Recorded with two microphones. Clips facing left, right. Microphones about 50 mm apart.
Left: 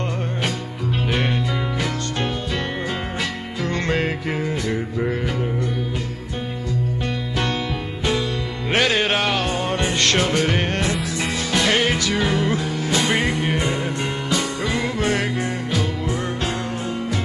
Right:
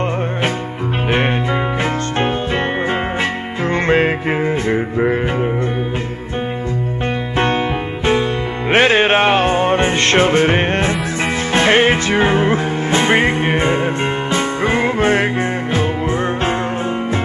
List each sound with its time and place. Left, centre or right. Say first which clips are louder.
3.6 s music: right 8 dB; right
8.0 s music: right 6 dB; right